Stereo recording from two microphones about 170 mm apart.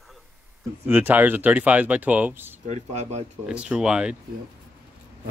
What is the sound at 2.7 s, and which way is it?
Speech, 40° right (ahead or behind).